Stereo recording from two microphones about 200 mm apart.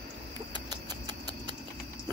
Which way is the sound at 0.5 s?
20° right (ahead or behind).